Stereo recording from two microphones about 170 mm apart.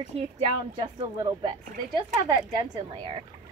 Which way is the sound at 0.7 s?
25° right (ahead or behind).